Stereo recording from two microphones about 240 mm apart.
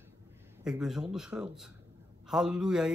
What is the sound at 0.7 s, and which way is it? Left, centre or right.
Speech, centre.